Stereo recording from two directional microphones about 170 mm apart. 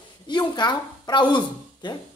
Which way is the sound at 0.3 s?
25° left (ahead or behind).